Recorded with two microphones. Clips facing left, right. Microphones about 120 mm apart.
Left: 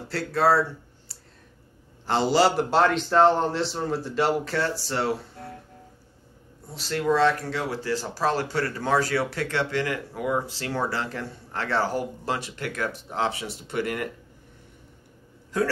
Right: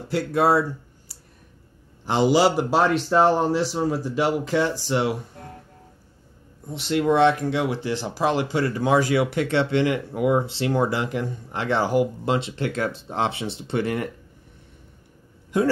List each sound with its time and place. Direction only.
0.1 s a man's voice: 15° right (ahead or behind)
6.7 s speech: 20° right (ahead or behind)
15.5 s speech: 20° right (ahead or behind)